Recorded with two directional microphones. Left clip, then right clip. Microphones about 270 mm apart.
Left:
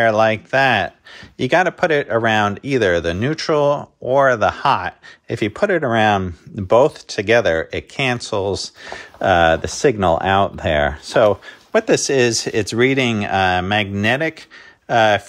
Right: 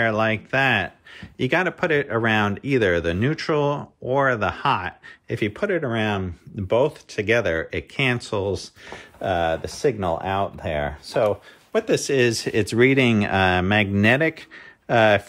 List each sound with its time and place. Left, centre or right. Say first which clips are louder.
0.0 s speech: left 7 dB; centre